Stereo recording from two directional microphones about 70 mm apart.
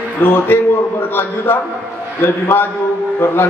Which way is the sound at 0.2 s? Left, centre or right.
Left.